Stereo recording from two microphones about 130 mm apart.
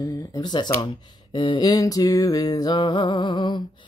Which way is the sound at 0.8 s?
40° left (ahead or behind).